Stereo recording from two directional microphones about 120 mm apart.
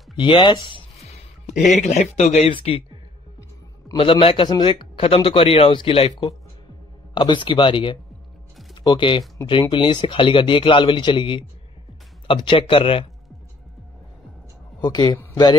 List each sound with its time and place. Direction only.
0.2 s speech: 45° left (ahead or behind)
1.5 s speech: 90° left; by 2.8 s 55° left (ahead or behind)
3.9 s speech: 45° left (ahead or behind)
14.9 s a man's voice: 35° left (ahead or behind)